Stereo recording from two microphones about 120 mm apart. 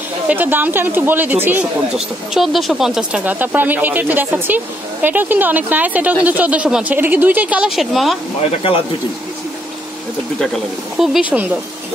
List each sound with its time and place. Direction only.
0.3 s a woman's voice: 15° right (ahead or behind)
2.3 s a woman's voice: centre (ahead or behind)
11.0 s a woman's voice: 10° right (ahead or behind)